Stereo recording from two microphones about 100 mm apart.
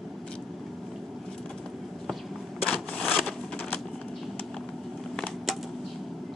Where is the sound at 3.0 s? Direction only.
Centre (ahead or behind).